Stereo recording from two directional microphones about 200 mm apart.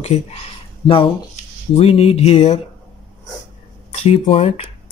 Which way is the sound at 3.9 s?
30° left (ahead or behind).